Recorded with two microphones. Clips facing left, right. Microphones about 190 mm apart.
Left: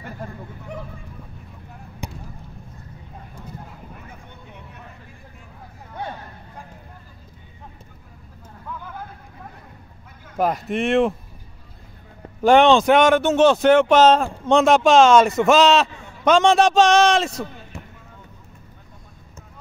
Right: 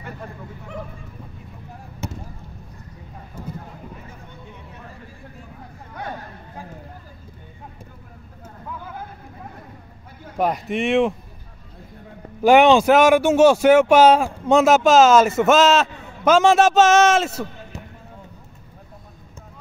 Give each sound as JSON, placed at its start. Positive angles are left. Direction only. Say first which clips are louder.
{"t": 2.0, "sound": "basketball bounce", "louder": "right 3 dB", "side_deg": 15}
{"t": 10.3, "sound": "speech", "louder": "even", "side_deg": 0}
{"t": 12.4, "sound": "speech", "louder": "right 1 dB", "side_deg": -5}